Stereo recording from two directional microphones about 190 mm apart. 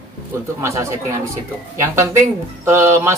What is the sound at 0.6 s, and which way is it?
Speech, 15° right (ahead or behind).